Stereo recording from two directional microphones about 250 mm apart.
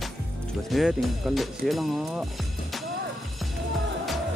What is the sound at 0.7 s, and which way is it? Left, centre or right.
Speech, centre.